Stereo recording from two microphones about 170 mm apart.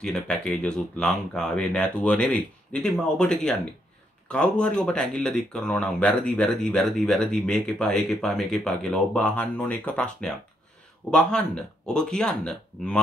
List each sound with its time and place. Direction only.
0.0 s speech: 5° left (ahead or behind)